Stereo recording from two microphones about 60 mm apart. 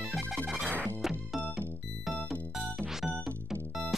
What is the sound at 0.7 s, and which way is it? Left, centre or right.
Music, left.